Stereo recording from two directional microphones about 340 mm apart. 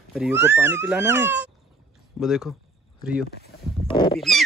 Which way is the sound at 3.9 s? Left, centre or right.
Centre.